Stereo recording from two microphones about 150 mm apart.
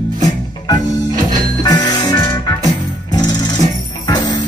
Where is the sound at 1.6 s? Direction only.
25° left (ahead or behind).